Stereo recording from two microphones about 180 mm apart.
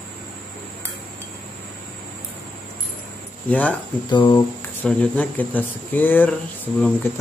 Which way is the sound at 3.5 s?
10° left (ahead or behind).